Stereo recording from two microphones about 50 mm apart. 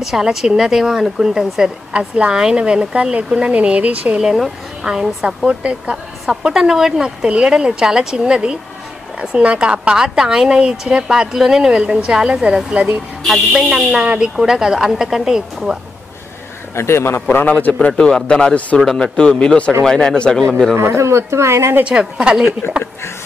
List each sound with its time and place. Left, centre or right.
0.0 s speech: centre; by 4.2 s right
4.8 s speech: centre
6.5 s a woman's voice: centre
13.3 s a woman's voice: centre
14.0 s a woman's voice: right
16.7 s a man's voice: left
17.5 s a man's voice: left
17.7 s speech: centre
20.7 s speech: right
21.8 s speech: centre